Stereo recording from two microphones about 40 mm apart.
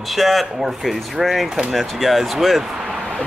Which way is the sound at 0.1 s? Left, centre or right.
Centre.